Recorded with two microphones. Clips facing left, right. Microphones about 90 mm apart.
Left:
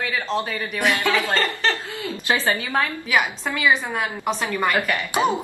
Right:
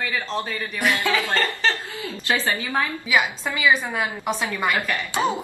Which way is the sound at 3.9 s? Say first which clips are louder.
Left 1 dB; 5° right (ahead or behind).